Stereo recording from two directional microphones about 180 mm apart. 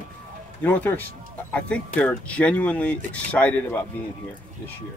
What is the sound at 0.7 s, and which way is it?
Speech, 10° left (ahead or behind).